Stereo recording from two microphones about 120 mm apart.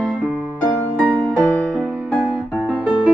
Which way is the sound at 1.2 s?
10° left (ahead or behind).